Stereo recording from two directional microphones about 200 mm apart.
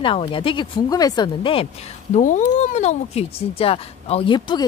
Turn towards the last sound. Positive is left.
turn(degrees=20)  # may be behind; listen again after turning